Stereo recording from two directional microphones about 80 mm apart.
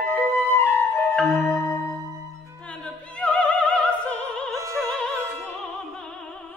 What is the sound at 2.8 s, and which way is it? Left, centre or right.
Opera, centre.